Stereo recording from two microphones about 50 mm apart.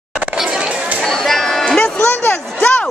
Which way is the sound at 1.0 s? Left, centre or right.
Centre.